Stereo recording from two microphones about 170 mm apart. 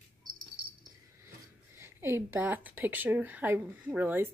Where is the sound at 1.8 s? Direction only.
15° right (ahead or behind).